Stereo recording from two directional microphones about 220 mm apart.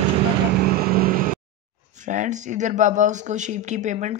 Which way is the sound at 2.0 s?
35° right (ahead or behind).